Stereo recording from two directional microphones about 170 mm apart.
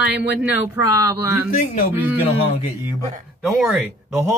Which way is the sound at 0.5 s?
20° right (ahead or behind).